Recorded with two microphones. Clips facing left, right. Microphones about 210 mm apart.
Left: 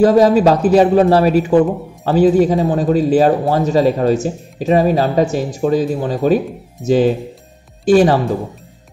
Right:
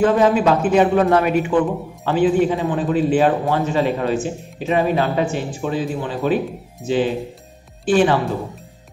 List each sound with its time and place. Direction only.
0.0 s a man's voice: 40° left (ahead or behind)